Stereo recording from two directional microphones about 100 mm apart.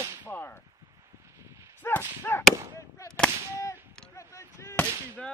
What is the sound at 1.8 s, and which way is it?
Gunshot, 20° left (ahead or behind).